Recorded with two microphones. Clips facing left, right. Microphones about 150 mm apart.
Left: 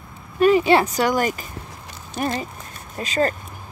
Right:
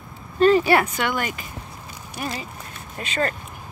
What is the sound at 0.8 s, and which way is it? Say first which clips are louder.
Speech: left 5 dB; 40° left (ahead or behind).